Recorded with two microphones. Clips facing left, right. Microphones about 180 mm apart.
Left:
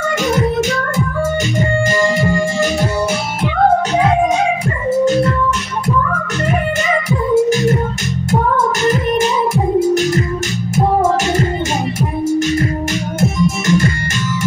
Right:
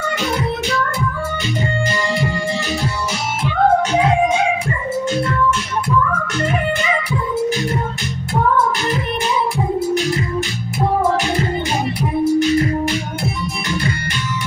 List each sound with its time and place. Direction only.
1.9 s music: 45° left (ahead or behind)
13.2 s music: 45° left (ahead or behind)